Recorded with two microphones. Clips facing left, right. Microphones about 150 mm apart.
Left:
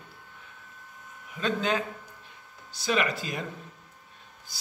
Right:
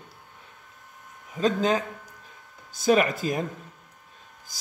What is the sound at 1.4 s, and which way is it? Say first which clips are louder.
Speech: right 5 dB; 40° right (ahead or behind).